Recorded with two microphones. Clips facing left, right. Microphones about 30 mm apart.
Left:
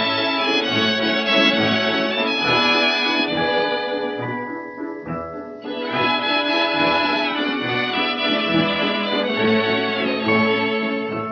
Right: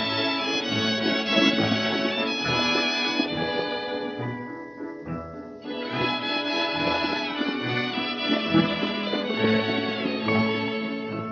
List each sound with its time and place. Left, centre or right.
0.0 s music: left
5.9 s music: left
9.3 s music: centre
9.6 s music: left